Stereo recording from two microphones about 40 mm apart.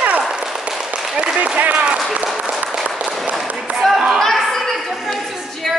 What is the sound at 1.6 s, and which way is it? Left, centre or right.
Applause, right.